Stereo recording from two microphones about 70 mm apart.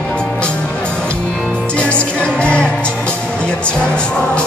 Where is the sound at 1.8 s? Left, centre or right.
Centre.